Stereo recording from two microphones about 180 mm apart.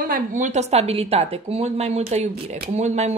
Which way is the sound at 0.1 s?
45° right (ahead or behind).